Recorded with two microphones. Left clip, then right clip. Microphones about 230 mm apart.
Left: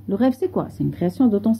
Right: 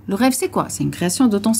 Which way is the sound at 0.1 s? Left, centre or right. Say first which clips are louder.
Right 2 dB; centre.